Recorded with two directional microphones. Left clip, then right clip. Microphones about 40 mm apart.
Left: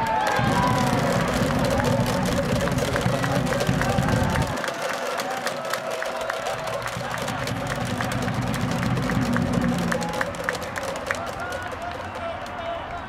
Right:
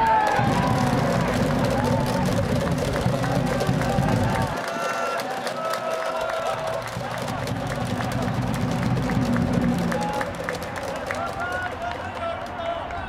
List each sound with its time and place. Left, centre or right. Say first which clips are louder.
0.0 s run: right 3 dB; left
8.8 s music: even; left